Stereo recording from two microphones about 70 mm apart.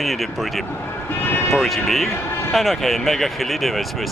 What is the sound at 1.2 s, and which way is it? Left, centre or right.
Music, left.